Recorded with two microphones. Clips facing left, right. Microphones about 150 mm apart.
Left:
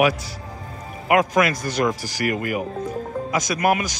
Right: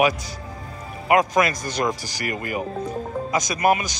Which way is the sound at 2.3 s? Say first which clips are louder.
Left 4 dB; 65° left (ahead or behind).